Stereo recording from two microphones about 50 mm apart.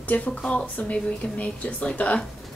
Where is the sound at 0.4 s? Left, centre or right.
Centre.